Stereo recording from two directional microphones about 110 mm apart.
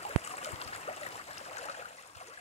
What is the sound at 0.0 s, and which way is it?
Stream, 80° left.